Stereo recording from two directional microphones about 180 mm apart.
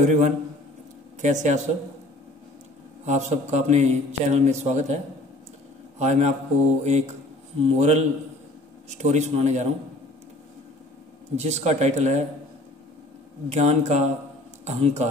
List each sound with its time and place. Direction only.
0.0 s speech: 40° right (ahead or behind)
3.1 s a man's voice: 40° right (ahead or behind)
11.3 s speech: 35° right (ahead or behind)
13.5 s speech: 40° right (ahead or behind)